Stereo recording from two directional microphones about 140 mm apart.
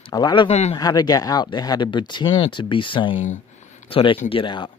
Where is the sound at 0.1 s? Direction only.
30° left (ahead or behind).